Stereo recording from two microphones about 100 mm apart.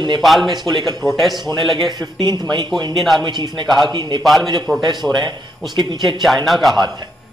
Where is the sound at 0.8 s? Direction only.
Centre (ahead or behind).